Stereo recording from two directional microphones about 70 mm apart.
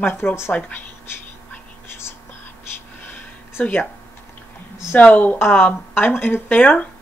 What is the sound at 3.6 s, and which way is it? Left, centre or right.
Speech, centre.